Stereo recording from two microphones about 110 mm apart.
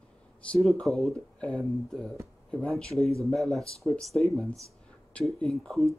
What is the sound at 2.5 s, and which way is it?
Speech, 10° left (ahead or behind).